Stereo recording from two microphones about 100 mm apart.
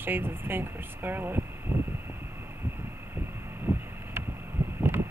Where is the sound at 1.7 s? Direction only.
10° right (ahead or behind).